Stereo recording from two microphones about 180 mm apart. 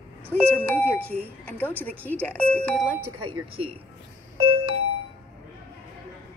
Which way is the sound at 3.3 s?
30° right (ahead or behind).